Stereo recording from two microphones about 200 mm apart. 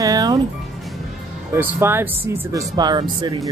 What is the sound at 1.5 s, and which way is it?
Speech, 10° right (ahead or behind).